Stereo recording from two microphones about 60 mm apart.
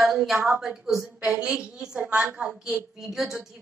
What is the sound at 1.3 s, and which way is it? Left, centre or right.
A woman's voice, right.